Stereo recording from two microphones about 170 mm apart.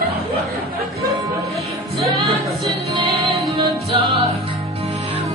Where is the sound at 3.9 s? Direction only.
35° right (ahead or behind).